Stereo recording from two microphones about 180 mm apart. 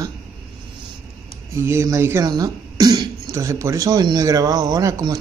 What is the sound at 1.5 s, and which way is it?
Speech, 15° right (ahead or behind).